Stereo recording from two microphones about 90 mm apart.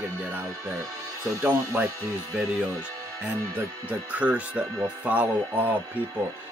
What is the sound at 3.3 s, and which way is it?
Speech, 20° right (ahead or behind).